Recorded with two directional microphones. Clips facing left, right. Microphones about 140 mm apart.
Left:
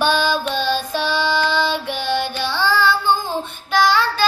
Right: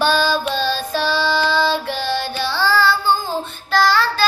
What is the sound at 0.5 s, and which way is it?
Child singing, 15° left (ahead or behind).